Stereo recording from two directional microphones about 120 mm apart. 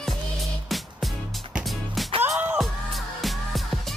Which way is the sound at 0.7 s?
Centre (ahead or behind).